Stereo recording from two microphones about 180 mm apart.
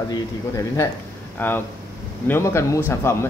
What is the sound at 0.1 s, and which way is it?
A man's voice, 15° left (ahead or behind).